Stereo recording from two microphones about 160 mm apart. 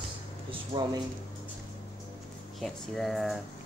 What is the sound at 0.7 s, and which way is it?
Speech, 40° right (ahead or behind).